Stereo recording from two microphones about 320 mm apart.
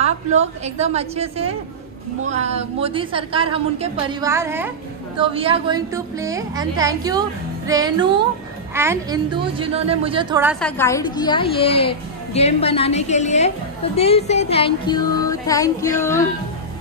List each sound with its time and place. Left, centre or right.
0.0 s a woman's voice: right; by 10.7 s centre
10.8 s music: centre
12.4 s a woman's voice: centre
13.9 s music: centre